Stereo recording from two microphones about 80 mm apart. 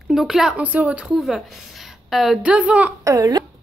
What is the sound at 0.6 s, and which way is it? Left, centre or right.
Speech, centre.